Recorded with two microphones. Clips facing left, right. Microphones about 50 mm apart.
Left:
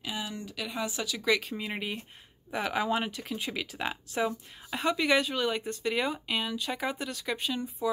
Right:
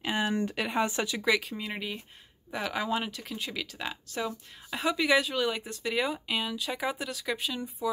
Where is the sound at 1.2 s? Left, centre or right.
Centre.